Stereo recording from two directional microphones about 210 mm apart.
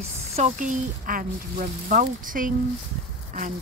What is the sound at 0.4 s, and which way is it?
Speech, 40° right (ahead or behind).